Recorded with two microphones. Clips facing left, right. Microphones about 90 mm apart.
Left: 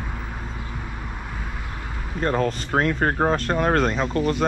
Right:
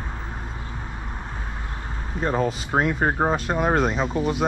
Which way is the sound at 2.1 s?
10° right (ahead or behind).